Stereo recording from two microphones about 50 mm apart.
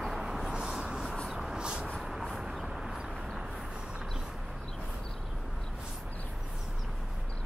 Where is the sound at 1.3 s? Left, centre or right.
Centre.